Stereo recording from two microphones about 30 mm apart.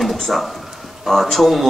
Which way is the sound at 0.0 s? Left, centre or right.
Centre.